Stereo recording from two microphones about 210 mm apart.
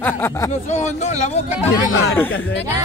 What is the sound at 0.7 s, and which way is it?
Speech, 35° left (ahead or behind).